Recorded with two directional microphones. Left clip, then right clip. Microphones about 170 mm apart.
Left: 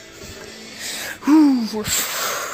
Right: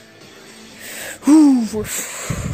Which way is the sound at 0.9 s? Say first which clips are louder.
Left 2 dB; 35° right (ahead or behind).